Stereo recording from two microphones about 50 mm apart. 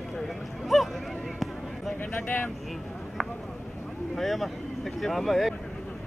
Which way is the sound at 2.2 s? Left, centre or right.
Left.